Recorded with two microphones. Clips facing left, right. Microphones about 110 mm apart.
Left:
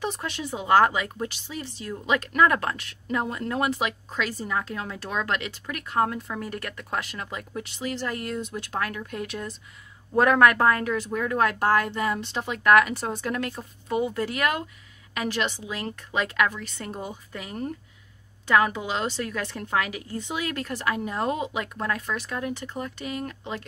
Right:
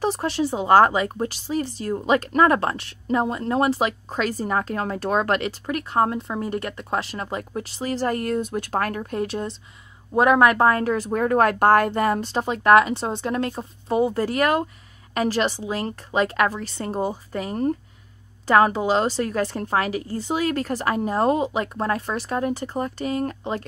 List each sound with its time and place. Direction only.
0.0 s speech: 35° right (ahead or behind)
10.1 s speech: 20° right (ahead or behind); by 23.6 s 35° right (ahead or behind)